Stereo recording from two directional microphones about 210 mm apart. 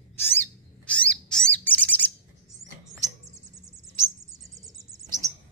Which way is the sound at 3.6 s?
15° right (ahead or behind).